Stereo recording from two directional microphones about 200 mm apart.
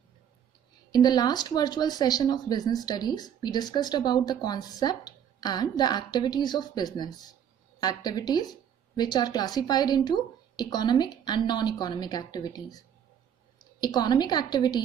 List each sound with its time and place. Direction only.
0.9 s speech: 20° left (ahead or behind)